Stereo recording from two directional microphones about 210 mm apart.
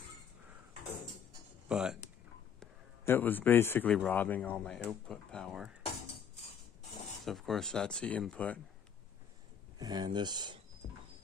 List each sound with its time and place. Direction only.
1.7 s speech: 5° right (ahead or behind)
2.6 s a man's voice: 10° left (ahead or behind)
7.2 s speech: centre (ahead or behind)
9.8 s speech: 20° right (ahead or behind)
10.8 s cricket: 50° left (ahead or behind)